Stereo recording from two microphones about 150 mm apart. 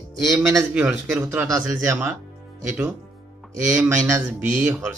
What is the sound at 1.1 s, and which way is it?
Speech, 15° right (ahead or behind).